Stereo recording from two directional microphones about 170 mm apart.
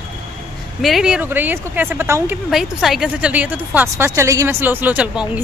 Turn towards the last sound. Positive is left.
turn(degrees=-5)  # may be behind; listen again after turning